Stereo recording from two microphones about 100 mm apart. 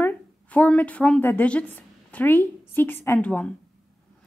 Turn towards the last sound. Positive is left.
turn(degrees=10)  # may be behind; listen again after turning